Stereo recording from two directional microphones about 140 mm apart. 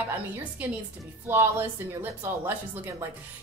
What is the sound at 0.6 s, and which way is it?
Speech, 10° right (ahead or behind).